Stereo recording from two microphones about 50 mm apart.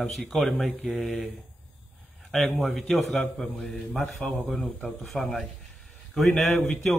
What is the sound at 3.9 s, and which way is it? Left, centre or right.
Mantra, centre.